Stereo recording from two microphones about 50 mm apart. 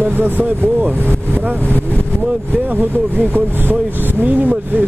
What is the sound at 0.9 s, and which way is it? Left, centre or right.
Speech, left.